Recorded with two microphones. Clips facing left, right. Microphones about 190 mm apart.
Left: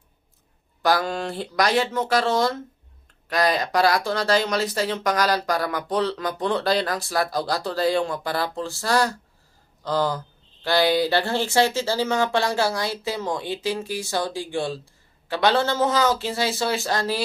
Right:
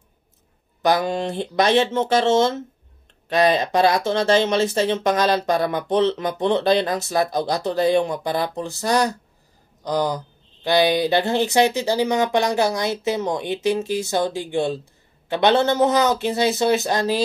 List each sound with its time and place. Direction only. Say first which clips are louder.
0.8 s speech: right 3 dB; 20° right (ahead or behind)